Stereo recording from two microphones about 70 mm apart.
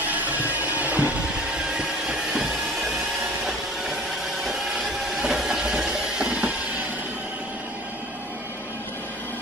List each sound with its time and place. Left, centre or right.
0.0 s music: right
1.8 s vehicle: centre
5.1 s a sound: centre